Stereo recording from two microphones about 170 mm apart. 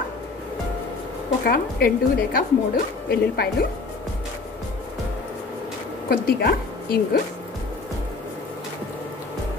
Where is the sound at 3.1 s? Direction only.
65° left (ahead or behind).